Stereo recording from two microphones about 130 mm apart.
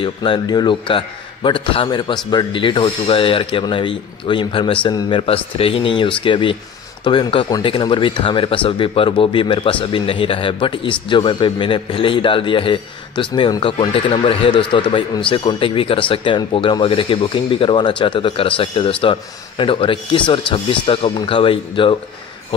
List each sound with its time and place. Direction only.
0.0 s speech: 40° left (ahead or behind)